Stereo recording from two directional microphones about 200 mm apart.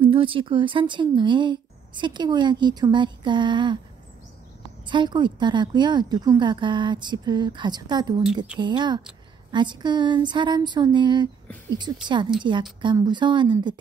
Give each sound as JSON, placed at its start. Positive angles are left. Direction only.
{"t": 0.0, "sound": "speech", "side_deg": -25}
{"t": 4.8, "sound": "speech", "side_deg": -25}